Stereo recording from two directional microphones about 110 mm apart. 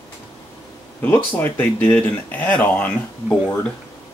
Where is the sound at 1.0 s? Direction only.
15° left (ahead or behind).